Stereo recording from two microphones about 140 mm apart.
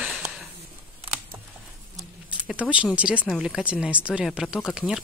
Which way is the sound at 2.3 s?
10° right (ahead or behind).